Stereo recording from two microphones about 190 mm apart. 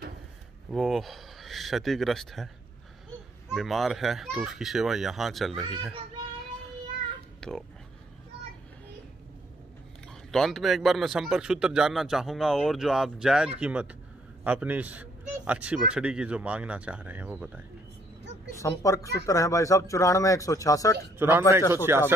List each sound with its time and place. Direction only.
0.7 s speech: centre (ahead or behind)
7.3 s a sound: 5° left (ahead or behind)
10.3 s a man's voice: centre (ahead or behind)
18.6 s speech: 15° left (ahead or behind)
21.2 s a man's voice: 10° right (ahead or behind)